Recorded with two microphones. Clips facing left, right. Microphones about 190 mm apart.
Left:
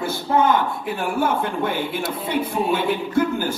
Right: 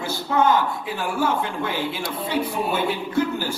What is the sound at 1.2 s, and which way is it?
Speech, 55° left (ahead or behind).